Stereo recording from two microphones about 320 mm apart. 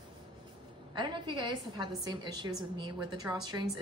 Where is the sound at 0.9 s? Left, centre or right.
Centre.